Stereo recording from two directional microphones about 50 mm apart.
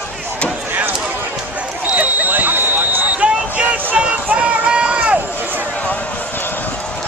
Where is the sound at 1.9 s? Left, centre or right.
Right.